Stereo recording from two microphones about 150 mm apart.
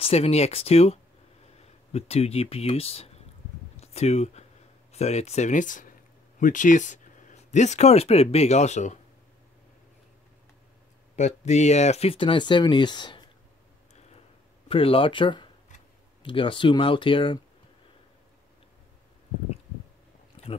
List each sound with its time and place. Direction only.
0.0 s speech: 40° left (ahead or behind)
11.1 s speech: 50° left (ahead or behind); by 13.3 s 30° left (ahead or behind)
14.7 s speech: 40° left (ahead or behind)